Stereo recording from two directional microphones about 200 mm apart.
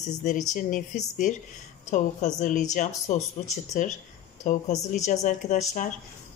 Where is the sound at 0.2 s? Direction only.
40° left (ahead or behind).